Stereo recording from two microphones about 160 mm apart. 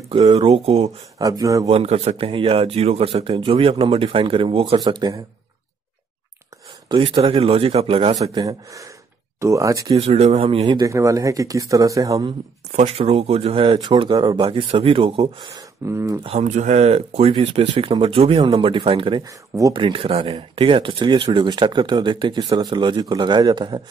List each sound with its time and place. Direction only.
0.4 s speech: 40° right (ahead or behind)
1.1 s speech: 25° right (ahead or behind)
1.7 s speech: 35° right (ahead or behind)
6.9 s speech: 30° right (ahead or behind)
8.2 s speech: 25° right (ahead or behind)
9.9 s speech: 40° right (ahead or behind)
10.9 s speech: 20° right (ahead or behind)
12.7 s speech: 40° right (ahead or behind); by 16.2 s 15° right (ahead or behind)
16.3 s speech: 50° right (ahead or behind); by 19.2 s 30° right (ahead or behind)
19.2 s speech: 20° right (ahead or behind)
19.8 s speech: 35° right (ahead or behind)